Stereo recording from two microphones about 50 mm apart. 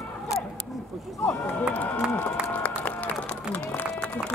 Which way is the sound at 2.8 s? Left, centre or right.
Left.